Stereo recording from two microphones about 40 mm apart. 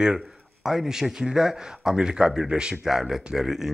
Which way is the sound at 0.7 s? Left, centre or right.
Centre.